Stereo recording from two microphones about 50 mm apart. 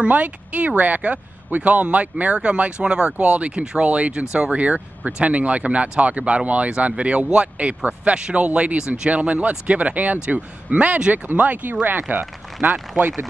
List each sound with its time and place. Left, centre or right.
0.0 s speech: right
8.5 s speech: right
8.7 s speech: centre
9.1 s speech: right